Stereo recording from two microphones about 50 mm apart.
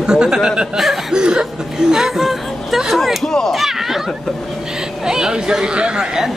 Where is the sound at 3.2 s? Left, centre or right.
Centre.